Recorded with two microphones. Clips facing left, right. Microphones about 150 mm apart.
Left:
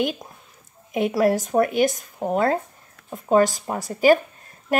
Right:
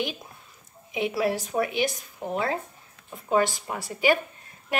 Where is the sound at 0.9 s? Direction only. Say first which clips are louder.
Left 6 dB; 45° left (ahead or behind).